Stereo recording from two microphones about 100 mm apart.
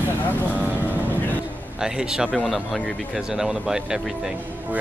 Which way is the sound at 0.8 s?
20° left (ahead or behind).